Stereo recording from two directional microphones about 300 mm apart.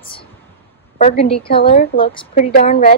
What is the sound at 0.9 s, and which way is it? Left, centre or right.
A woman's voice, left.